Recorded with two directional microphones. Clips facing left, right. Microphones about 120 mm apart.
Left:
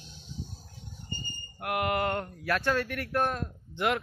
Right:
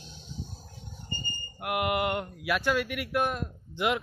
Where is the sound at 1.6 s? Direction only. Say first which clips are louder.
Right 1 dB; 15° right (ahead or behind).